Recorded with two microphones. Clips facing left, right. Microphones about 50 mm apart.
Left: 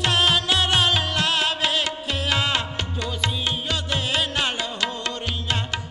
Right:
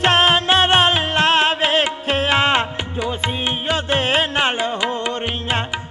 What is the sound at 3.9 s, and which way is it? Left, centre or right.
Carnatic music, right.